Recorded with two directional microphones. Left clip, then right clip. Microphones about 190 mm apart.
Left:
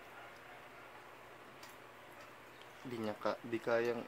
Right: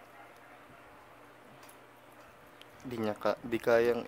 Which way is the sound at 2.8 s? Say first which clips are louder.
Right 7 dB; 55° right (ahead or behind).